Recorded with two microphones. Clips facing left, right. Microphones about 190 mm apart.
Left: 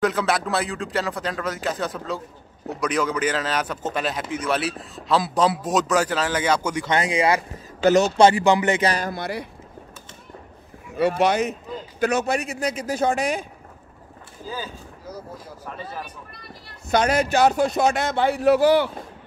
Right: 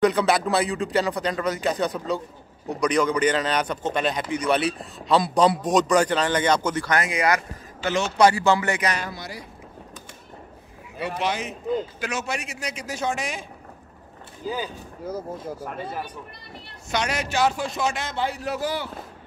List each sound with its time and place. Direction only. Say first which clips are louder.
0.0 s a man's voice: right 2 dB; centre (ahead or behind)
6.9 s speech: left 3 dB; 30° left (ahead or behind)
7.8 s speech: left 8 dB; 40° left (ahead or behind)
8.2 s speech: left 2 dB; 20° left (ahead or behind)
9.1 s a man's voice: left 8 dB; 60° left (ahead or behind)
11.0 s speech: left 8 dB; 45° left (ahead or behind)
12.0 s a man's voice: left 8 dB; 55° left (ahead or behind)
13.1 s speech: left 6 dB; 35° left (ahead or behind)
14.4 s speech: right 3 dB; 15° right (ahead or behind)
15.0 s speech: right 6 dB; 50° right (ahead or behind)
16.9 s speech: left 7 dB; 50° left (ahead or behind)
17.8 s a man's voice: left 6 dB; 60° left (ahead or behind)